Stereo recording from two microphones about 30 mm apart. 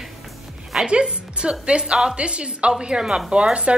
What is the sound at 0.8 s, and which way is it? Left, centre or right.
A woman's voice, right.